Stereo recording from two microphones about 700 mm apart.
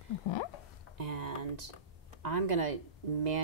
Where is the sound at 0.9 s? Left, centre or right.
Right.